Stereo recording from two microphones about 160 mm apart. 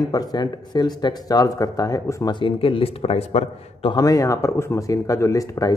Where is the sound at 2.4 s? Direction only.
35° left (ahead or behind).